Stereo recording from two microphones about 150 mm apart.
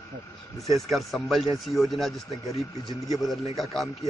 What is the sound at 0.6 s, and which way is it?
Speech, centre (ahead or behind).